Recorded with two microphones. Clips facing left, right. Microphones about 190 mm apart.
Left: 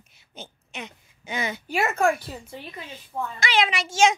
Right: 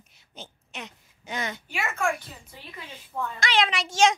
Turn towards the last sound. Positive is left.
turn(degrees=0)  # may be behind; listen again after turning